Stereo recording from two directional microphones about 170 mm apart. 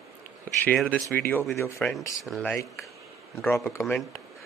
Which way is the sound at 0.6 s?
5° left (ahead or behind).